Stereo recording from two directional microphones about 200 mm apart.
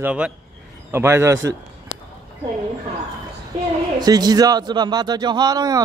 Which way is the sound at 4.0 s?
20° right (ahead or behind).